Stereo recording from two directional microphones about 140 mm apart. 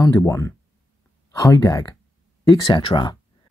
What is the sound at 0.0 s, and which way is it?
Speech, 20° left (ahead or behind).